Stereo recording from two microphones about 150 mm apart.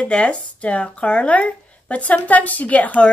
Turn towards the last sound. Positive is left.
turn(degrees=10)  # may be behind; listen again after turning